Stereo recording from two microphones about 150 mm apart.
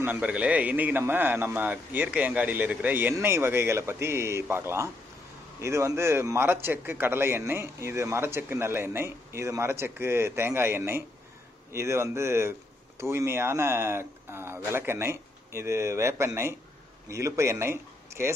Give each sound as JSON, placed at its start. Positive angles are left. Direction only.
{"t": 0.0, "sound": "a man's voice", "side_deg": -10}